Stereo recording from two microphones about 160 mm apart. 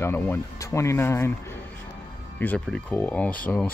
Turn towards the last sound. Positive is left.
turn(degrees=10)  # may be behind; listen again after turning